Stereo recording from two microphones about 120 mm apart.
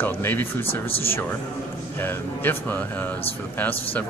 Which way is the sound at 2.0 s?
15° left (ahead or behind).